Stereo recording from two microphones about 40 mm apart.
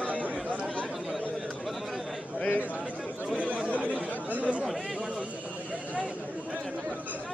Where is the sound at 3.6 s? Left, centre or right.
Right.